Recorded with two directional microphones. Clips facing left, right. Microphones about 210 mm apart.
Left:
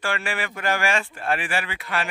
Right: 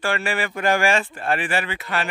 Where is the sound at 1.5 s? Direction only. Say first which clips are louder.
Right 3 dB; 30° right (ahead or behind).